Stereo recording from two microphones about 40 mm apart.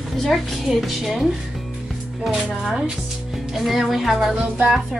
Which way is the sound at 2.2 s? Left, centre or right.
Centre.